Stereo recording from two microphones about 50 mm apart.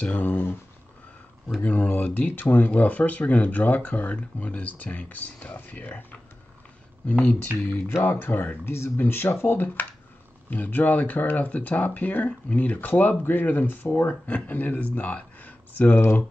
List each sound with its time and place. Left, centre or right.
0.0 s speech: left
1.6 s speech: left
2.7 s speech: left
7.1 s speech: left
8.6 s speech: left
10.5 s speech: left
13.2 s speech: left
16.0 s speech: left